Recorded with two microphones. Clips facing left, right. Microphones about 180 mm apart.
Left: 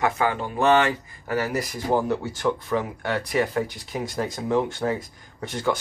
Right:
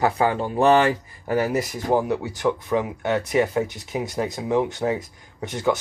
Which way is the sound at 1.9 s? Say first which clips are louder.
Right 1 dB; 15° right (ahead or behind).